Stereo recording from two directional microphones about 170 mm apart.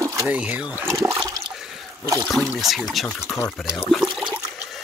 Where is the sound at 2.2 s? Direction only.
Centre (ahead or behind).